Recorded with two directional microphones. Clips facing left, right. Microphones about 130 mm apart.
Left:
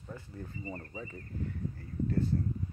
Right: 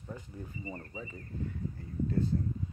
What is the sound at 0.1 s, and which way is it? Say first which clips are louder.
Speech: even; 15° right (ahead or behind).